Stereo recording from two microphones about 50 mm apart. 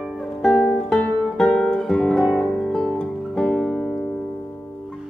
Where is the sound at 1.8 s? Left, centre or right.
Centre.